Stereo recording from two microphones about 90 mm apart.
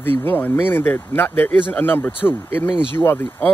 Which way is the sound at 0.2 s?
20° left (ahead or behind).